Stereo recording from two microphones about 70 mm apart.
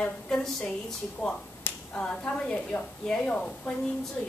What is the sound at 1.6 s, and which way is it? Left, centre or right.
Finger snapping, left.